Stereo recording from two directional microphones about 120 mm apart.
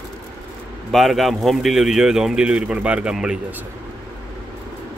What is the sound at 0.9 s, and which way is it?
Speech, centre (ahead or behind).